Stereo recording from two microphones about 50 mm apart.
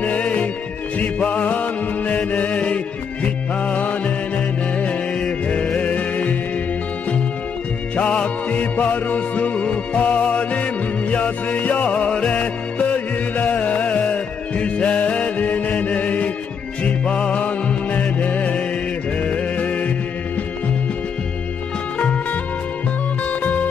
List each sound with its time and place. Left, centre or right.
0.0 s music: left
7.9 s music: left
21.9 s music: left